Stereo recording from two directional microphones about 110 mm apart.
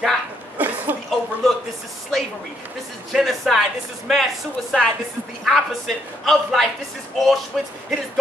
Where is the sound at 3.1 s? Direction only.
Centre (ahead or behind).